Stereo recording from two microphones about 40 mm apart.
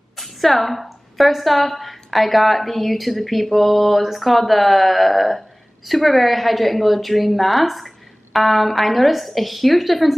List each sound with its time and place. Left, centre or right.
0.2 s a woman's voice: centre